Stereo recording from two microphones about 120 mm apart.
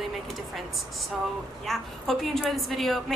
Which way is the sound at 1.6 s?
Centre (ahead or behind).